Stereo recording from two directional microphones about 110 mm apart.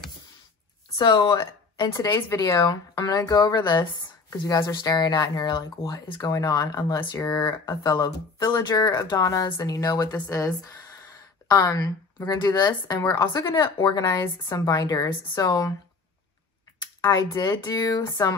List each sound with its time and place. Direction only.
0.9 s speech: 40° left (ahead or behind)
17.0 s speech: 30° left (ahead or behind)